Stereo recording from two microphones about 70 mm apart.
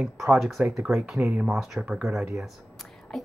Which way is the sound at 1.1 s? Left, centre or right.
Right.